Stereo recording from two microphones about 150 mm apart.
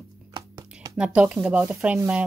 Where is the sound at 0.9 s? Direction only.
5° right (ahead or behind).